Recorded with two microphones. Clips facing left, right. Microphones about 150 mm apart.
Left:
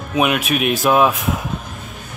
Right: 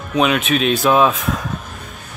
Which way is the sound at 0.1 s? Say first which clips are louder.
Right 1 dB; 10° left (ahead or behind).